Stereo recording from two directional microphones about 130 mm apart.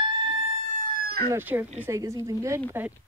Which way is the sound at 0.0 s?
40° right (ahead or behind).